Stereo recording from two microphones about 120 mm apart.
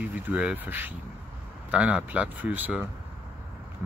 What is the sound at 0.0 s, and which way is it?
Speech, 15° right (ahead or behind).